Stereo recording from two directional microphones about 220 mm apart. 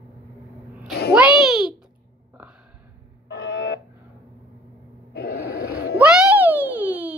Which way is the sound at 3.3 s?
50° left (ahead or behind).